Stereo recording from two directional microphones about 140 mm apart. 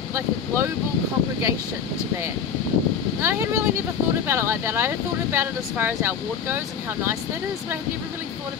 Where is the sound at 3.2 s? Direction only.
20° right (ahead or behind).